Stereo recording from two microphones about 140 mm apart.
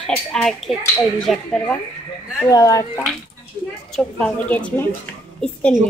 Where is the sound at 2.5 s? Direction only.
25° left (ahead or behind).